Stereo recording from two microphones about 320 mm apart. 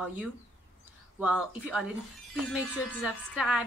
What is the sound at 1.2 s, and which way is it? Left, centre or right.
A woman's voice, centre.